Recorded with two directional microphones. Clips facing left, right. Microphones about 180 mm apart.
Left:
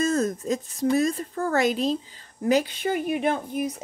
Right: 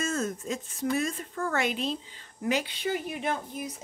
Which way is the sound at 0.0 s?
40° left (ahead or behind).